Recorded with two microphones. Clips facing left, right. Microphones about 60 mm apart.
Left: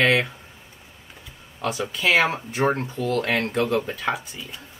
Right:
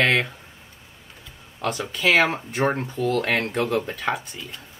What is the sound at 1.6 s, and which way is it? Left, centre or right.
Speech, centre.